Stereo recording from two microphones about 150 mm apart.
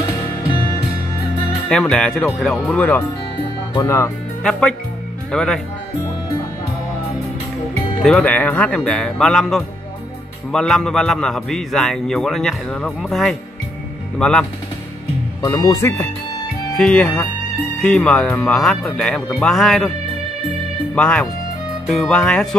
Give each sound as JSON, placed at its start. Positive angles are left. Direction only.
{"t": 1.7, "sound": "a man's voice", "side_deg": 5}
{"t": 4.4, "sound": "a man's voice", "side_deg": 5}
{"t": 8.0, "sound": "a man's voice", "side_deg": 5}
{"t": 15.4, "sound": "speech", "side_deg": 25}
{"t": 16.7, "sound": "a man's voice", "side_deg": 5}
{"t": 20.9, "sound": "a man's voice", "side_deg": 5}